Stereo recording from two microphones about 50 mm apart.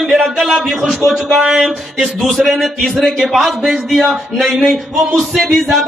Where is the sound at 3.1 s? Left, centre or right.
Centre.